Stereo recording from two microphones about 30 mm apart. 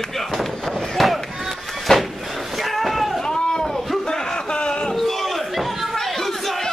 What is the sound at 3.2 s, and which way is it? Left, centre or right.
Boat, left.